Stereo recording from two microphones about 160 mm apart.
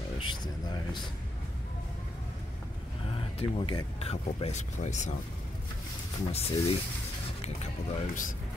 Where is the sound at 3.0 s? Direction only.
35° left (ahead or behind).